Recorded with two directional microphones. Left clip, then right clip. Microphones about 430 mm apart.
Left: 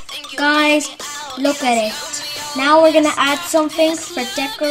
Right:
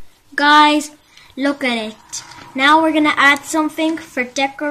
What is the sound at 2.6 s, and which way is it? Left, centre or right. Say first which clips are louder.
A woman's voice: left 1 dB; centre.